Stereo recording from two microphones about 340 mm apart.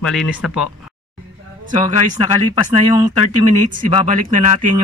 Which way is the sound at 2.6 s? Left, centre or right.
Centre.